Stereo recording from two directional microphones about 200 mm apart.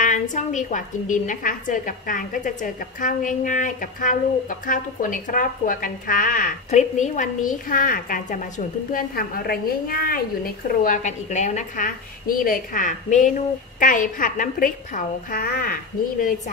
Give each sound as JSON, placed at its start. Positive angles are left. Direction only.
{"t": 0.0, "sound": "a woman's voice", "side_deg": 40}